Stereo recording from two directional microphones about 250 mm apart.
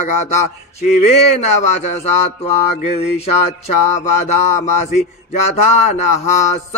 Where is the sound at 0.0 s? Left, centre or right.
Left.